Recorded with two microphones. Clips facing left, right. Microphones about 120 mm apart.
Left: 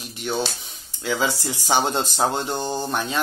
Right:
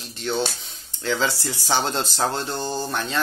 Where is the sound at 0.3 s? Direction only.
15° left (ahead or behind).